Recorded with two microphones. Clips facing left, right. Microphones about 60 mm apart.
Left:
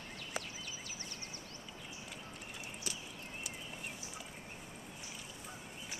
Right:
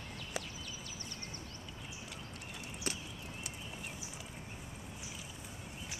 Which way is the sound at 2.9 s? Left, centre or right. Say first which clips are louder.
Right 6 dB; right.